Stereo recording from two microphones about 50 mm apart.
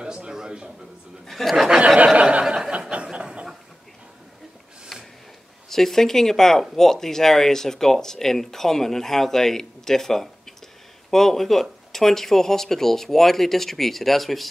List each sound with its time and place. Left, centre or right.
0.0 s a sound: centre
1.2 s speech: centre
2.0 s a sound: centre
2.4 s chuckle: centre
2.7 s chuckle: right
5.7 s speech: centre